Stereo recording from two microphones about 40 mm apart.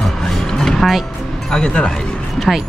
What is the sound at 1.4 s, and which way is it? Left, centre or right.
Music, centre.